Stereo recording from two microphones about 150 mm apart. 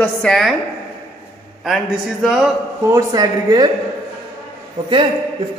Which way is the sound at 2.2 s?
5° right (ahead or behind).